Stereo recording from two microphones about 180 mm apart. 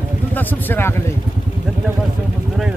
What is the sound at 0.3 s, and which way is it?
Speech, 10° left (ahead or behind).